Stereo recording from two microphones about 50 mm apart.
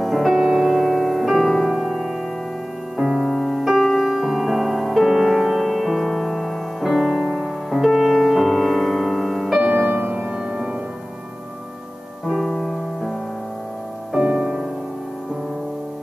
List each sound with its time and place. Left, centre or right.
0.0 s music: centre
9.6 s music: centre
9.8 s music: right
10.3 s music: centre
12.3 s music: centre
14.1 s music: centre